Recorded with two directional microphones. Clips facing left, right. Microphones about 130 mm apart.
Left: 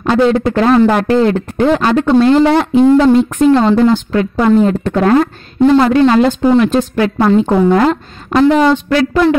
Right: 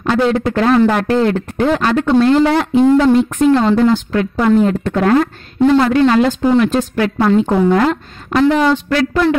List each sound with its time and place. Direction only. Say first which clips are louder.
0.0 s speech: left 3 dB; 25° left (ahead or behind)
8.5 s speech: left 3 dB; 20° left (ahead or behind)